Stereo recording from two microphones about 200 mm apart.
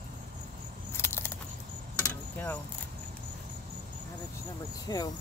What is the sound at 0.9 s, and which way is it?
Keys jangling, 10° left (ahead or behind).